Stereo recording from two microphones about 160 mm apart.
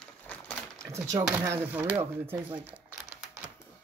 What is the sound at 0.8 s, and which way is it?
Speech, 20° right (ahead or behind).